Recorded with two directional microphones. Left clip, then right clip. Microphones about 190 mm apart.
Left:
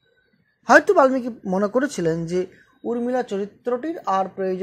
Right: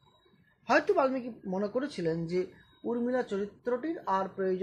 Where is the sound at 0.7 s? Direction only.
25° left (ahead or behind).